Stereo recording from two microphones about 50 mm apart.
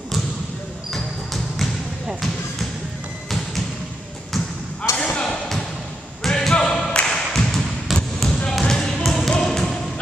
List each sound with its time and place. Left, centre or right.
0.9 s basketball bounce: centre
4.9 s basketball bounce: centre
6.2 s a sound: centre
7.9 s basketball bounce: centre
9.0 s a sound: centre
9.4 s basketball bounce: centre